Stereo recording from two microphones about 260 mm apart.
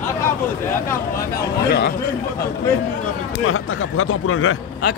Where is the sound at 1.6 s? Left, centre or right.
Left.